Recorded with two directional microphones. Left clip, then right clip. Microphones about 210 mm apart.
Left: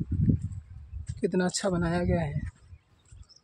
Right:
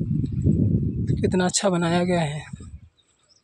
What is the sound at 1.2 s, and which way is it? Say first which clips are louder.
Speech: right 5 dB; 15° right (ahead or behind).